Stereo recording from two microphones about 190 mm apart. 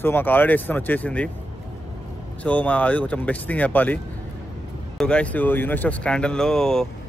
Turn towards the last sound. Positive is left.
turn(degrees=5)  # may be behind; listen again after turning